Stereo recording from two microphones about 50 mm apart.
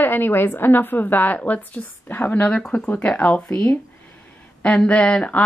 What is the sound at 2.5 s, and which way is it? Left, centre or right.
Speech, centre.